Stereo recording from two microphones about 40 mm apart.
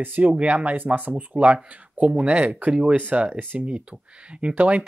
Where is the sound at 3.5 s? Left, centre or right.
Right.